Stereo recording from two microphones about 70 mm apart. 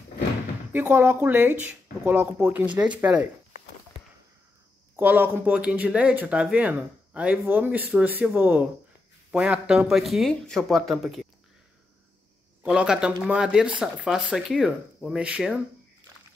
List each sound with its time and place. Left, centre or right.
0.7 s speech: right
4.9 s speech: right
9.3 s speech: centre
9.8 s speech: centre
12.6 s speech: centre
15.0 s speech: centre